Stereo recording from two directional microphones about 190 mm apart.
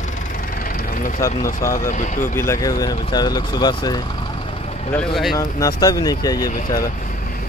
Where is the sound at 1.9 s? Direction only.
45° left (ahead or behind).